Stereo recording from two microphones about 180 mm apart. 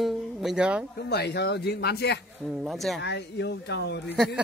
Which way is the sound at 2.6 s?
Centre (ahead or behind).